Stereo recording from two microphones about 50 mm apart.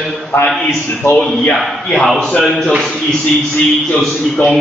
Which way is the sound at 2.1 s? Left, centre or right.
Centre.